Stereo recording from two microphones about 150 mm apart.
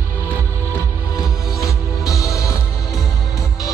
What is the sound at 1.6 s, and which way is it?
Music, 20° left (ahead or behind).